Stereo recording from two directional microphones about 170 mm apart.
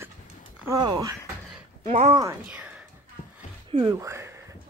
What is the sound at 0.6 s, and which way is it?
Speech, 20° right (ahead or behind).